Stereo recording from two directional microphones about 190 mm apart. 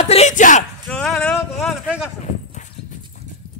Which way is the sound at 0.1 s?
40° left (ahead or behind).